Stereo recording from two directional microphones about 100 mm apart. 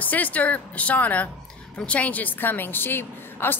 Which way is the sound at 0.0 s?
15° left (ahead or behind).